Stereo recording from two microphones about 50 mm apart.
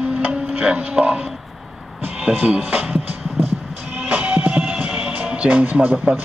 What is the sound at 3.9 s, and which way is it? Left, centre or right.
Music, right.